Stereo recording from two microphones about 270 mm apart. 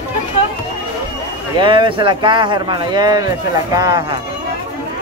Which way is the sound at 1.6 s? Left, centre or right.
Centre.